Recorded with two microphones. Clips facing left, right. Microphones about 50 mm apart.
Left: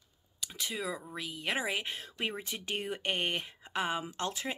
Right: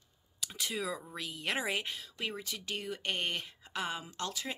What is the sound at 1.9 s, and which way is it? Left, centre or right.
Speech, left.